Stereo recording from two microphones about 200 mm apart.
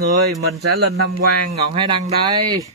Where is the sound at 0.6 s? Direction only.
55° right (ahead or behind).